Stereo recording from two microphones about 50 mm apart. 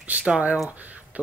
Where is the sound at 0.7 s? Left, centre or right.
Right.